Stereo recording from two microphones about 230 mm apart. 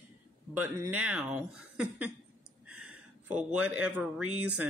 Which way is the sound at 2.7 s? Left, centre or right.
Right.